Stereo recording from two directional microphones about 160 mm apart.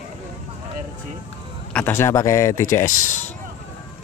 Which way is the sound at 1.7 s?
10° left (ahead or behind).